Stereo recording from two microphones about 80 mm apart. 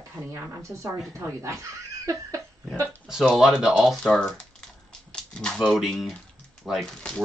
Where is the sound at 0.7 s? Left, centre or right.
Right.